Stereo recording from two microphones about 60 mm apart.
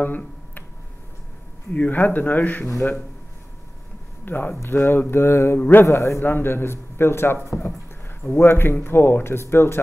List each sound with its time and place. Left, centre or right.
0.0 s tick-tock: left
1.7 s speech: left
4.2 s speech: left
5.6 s speech: left
5.9 s speech: left
6.2 s speech: left